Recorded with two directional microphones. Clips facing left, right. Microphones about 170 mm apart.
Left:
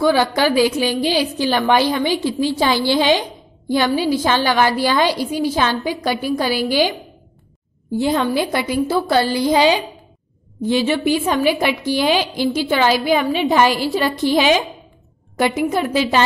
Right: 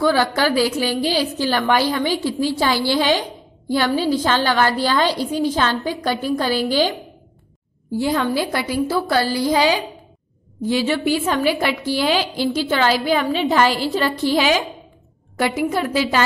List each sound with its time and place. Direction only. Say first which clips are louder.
0.0 s a woman's voice: left 2 dB; 15° left (ahead or behind)